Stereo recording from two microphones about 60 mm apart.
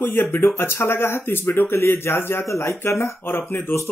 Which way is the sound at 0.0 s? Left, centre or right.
Left.